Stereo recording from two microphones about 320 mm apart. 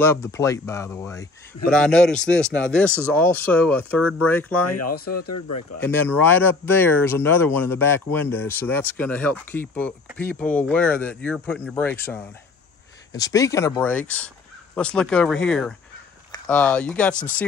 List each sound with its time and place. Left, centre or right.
0.0 s speech: centre
4.6 s speech: left
4.9 s speech: left
5.2 s speech: left
5.9 s speech: centre